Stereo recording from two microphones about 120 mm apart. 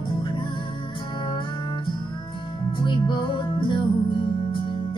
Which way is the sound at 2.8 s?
40° left (ahead or behind).